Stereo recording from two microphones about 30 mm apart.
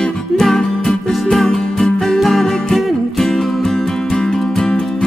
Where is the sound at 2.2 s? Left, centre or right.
Centre; by 4.7 s left.